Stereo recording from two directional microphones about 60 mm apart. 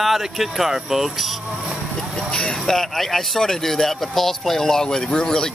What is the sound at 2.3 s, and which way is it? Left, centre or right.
Speech, centre.